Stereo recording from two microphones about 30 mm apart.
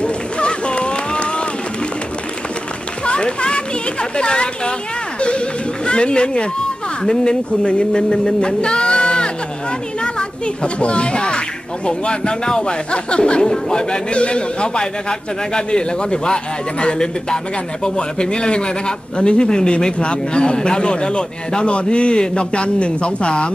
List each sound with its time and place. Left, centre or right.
0.0 s run: left
3.1 s children playing: left
4.2 s a man's voice: left
5.9 s a man's voice: left
13.4 s speech: left
14.1 s a man's voice: left